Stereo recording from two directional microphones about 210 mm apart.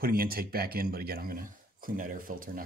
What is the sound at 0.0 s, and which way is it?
Speech, 45° right (ahead or behind).